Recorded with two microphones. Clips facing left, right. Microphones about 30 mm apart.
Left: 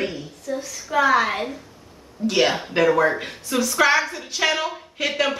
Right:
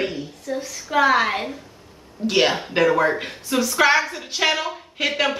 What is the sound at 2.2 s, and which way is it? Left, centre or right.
Speech, right.